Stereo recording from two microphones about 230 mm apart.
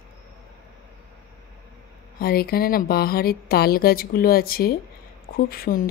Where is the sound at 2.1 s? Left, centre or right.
Left.